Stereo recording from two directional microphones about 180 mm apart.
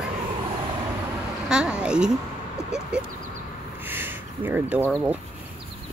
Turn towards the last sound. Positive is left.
turn(degrees=-10)  # may be behind; listen again after turning